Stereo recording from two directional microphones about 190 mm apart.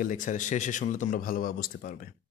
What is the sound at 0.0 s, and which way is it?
Speech, 40° left (ahead or behind).